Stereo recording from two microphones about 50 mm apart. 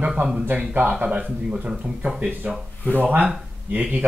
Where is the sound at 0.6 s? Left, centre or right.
Right.